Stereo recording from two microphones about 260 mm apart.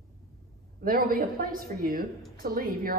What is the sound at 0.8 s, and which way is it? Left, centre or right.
Speech, right.